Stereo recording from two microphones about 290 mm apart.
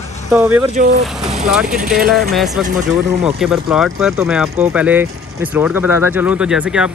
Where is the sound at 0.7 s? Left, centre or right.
Right.